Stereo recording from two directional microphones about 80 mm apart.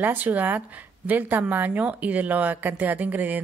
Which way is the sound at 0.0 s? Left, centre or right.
Right.